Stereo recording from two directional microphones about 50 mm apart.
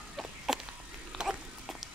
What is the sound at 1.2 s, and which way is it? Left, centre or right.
Clip-clop, centre.